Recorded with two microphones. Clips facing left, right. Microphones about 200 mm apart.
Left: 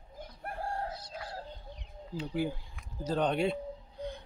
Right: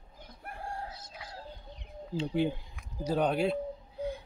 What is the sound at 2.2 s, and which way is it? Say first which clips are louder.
Speech: right 4 dB; 25° right (ahead or behind).